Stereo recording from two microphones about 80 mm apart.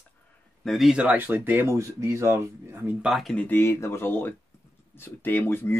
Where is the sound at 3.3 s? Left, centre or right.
Left.